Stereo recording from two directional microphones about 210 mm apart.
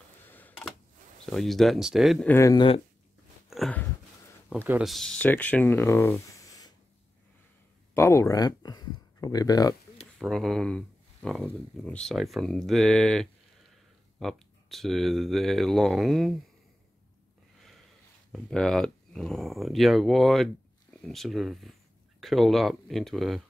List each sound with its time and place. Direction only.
0.3 s a sound: 10° left (ahead or behind)
1.2 s speech: centre (ahead or behind); by 2.8 s 20° left (ahead or behind)
3.4 s a sound: centre (ahead or behind)
4.6 s speech: 5° right (ahead or behind); by 6.7 s 15° left (ahead or behind)
7.9 s speech: 15° left (ahead or behind)
10.1 s speech: centre (ahead or behind)
18.3 s speech: 5° left (ahead or behind)